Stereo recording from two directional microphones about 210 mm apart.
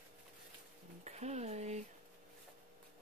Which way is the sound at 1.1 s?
30° right (ahead or behind).